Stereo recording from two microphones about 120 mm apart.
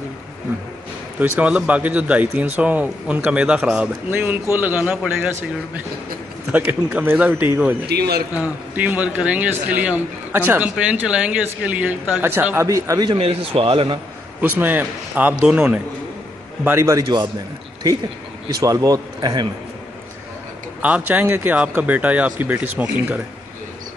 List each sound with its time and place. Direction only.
1.2 s a man's voice: 10° right (ahead or behind)
6.5 s a man's voice: 15° right (ahead or behind)
13.1 s a man's voice: 50° right (ahead or behind)
14.4 s a man's voice: 15° right (ahead or behind)
16.6 s a man's voice: 20° right (ahead or behind)
17.0 s a man's voice: 35° right (ahead or behind)
18.6 s a man's voice: 30° right (ahead or behind)
20.8 s a man's voice: 10° right (ahead or behind)